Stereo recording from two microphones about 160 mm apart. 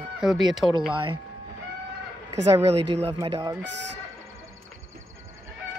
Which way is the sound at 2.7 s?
40° right (ahead or behind).